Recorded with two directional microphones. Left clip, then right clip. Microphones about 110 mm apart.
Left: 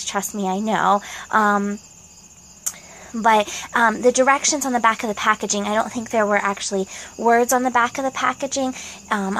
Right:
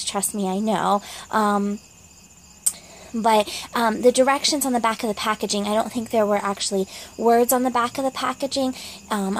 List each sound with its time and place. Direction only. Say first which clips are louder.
0.1 s speech: left 3 dB; 25° right (ahead or behind)
3.2 s speech: left 2 dB; 25° right (ahead or behind)